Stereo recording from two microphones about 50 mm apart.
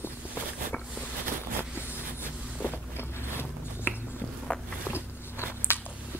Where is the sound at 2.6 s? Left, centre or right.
Left.